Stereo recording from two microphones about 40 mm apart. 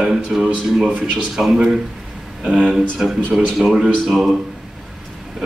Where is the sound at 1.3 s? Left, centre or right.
Centre.